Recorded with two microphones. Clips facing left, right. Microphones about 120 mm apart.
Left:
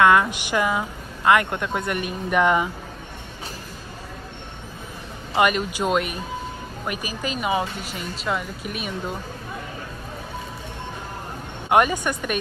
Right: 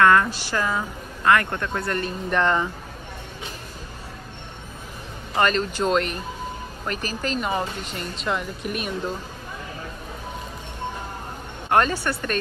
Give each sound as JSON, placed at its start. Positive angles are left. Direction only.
{"t": 0.0, "sound": "speech", "side_deg": 15}
{"t": 5.3, "sound": "speech", "side_deg": 10}
{"t": 11.7, "sound": "speech", "side_deg": 15}